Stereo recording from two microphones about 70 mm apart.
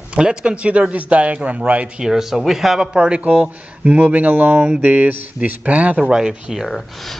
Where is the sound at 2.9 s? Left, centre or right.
Centre.